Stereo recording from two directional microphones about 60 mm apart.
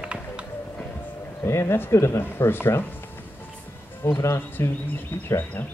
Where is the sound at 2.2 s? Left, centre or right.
Left.